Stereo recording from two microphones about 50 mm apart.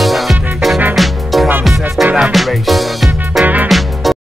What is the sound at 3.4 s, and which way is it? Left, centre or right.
Music, right.